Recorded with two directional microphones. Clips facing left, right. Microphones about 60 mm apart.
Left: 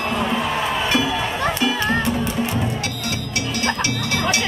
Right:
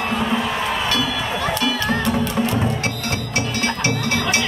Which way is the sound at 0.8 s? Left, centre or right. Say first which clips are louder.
Left 1 dB; left.